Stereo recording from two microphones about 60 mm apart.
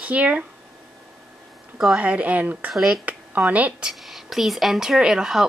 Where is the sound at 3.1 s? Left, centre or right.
Right.